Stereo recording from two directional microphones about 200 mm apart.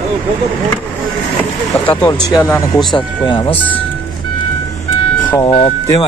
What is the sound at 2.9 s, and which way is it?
Speech, 25° left (ahead or behind).